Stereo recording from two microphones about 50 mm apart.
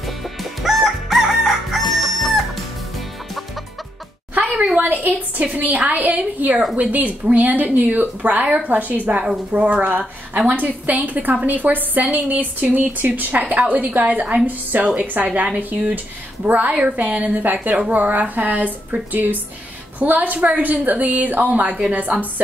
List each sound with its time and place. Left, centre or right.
0.0 s chicken: centre
4.4 s a sound: right
4.7 s speech: right